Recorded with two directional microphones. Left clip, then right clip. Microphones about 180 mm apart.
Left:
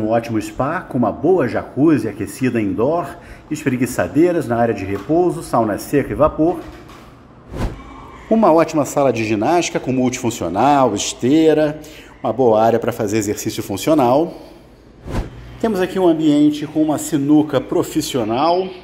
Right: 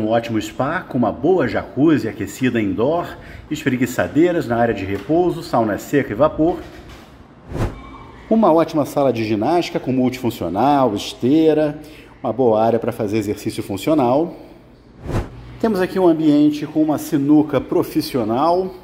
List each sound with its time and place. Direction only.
0.0 s speech: 5° right (ahead or behind)
8.3 s speech: 10° right (ahead or behind)
15.6 s speech: 10° right (ahead or behind)
17.8 s speech: 45° right (ahead or behind)
18.3 s speech: 30° right (ahead or behind)